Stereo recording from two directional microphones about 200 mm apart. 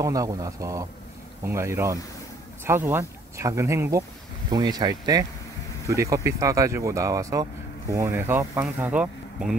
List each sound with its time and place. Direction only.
0.0 s speech: 15° right (ahead or behind)